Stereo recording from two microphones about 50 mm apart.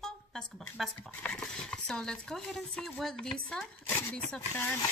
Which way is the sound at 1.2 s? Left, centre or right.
Left.